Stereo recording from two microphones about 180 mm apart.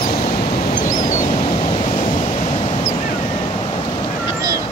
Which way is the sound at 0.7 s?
45° left (ahead or behind).